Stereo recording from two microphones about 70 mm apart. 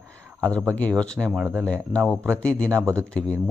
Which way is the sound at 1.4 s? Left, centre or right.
Right.